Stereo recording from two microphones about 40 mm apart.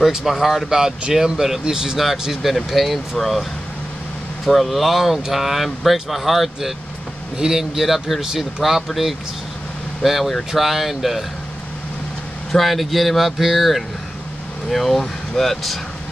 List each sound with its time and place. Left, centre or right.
0.0 s speech: centre
2.0 s speech: centre
4.5 s speech: centre
12.5 s speech: centre